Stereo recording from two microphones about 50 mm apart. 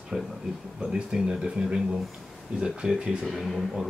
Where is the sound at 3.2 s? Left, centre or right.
Centre.